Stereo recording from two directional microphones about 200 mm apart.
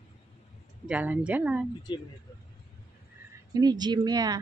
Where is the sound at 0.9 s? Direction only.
5° right (ahead or behind).